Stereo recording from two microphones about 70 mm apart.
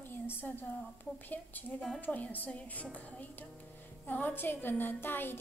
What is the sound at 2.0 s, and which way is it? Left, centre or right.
A woman's voice, left.